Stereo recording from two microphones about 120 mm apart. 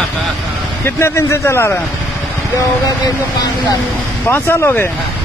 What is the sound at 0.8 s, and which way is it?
Speech, 20° left (ahead or behind).